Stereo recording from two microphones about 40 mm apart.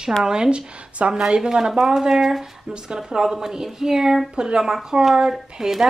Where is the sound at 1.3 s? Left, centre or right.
Centre.